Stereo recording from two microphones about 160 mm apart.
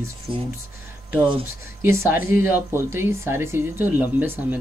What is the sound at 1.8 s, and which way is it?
Speech, 15° right (ahead or behind).